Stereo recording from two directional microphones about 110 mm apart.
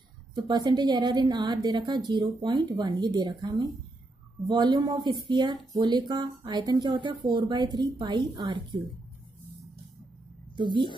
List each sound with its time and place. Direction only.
0.3 s a woman's voice: 40° right (ahead or behind)
10.5 s a woman's voice: 45° right (ahead or behind)